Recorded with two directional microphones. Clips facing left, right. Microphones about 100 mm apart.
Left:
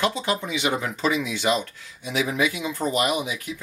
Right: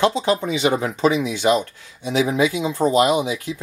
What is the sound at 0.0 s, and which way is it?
Speech, 25° right (ahead or behind).